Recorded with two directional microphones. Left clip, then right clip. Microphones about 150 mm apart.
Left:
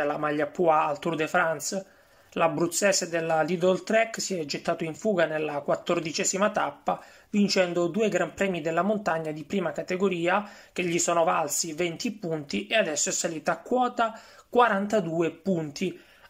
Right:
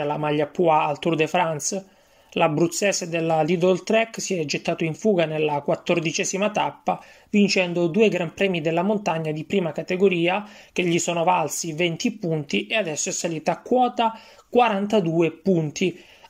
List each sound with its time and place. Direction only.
0.0 s speech: 20° right (ahead or behind)